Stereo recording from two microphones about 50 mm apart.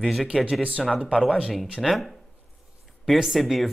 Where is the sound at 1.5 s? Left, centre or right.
Centre.